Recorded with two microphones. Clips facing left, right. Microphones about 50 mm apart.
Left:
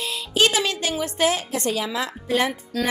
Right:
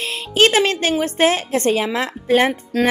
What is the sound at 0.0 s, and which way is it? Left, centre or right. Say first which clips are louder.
A woman's voice: right 5 dB; right.